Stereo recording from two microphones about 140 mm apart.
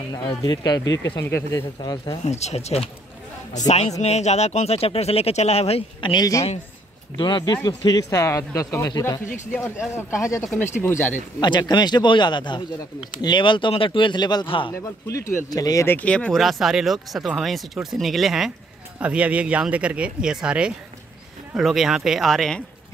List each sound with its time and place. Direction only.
0.1 s speech: 30° left (ahead or behind)
1.8 s speech: 30° left (ahead or behind)
2.2 s speech: 50° left (ahead or behind); by 11.1 s 15° left (ahead or behind)
11.3 s speech: 30° left (ahead or behind)
15.5 s speech: 25° left (ahead or behind); by 22.6 s centre (ahead or behind)